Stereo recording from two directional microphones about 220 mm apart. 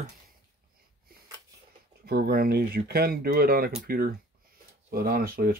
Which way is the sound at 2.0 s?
45° right (ahead or behind).